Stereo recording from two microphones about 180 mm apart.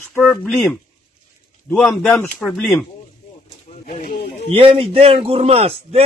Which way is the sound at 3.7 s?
40° left (ahead or behind).